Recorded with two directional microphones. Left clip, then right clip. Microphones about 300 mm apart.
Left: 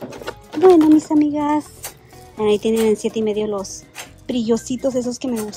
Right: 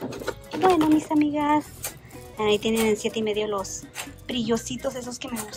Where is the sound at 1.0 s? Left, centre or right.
Centre.